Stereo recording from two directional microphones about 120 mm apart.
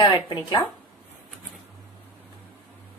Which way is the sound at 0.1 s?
45° left (ahead or behind).